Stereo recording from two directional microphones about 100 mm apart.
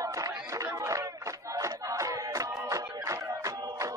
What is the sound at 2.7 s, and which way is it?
Music, 40° right (ahead or behind).